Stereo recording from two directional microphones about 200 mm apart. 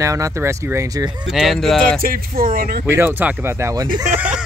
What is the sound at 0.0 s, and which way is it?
Speech, 15° right (ahead or behind).